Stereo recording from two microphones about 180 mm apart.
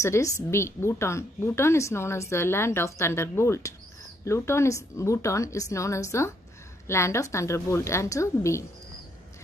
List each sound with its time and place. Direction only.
0.0 s a woman's voice: 15° left (ahead or behind)